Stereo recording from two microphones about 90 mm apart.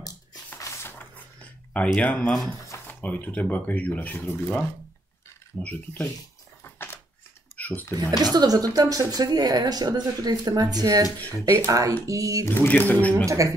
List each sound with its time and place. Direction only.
0.0 s a sound: 45° left (ahead or behind)
0.8 s a sound: 20° left (ahead or behind)
2.0 s speech: 10° left (ahead or behind)
2.9 s speech: 20° left (ahead or behind)
6.6 s door: 25° left (ahead or behind)
7.5 s dishes: 20° left (ahead or behind)
8.2 s a woman's voice: 45° right (ahead or behind)
11.3 s speech: 35° right (ahead or behind)
12.4 s speech: 20° left (ahead or behind)
13.2 s speech: 35° right (ahead or behind)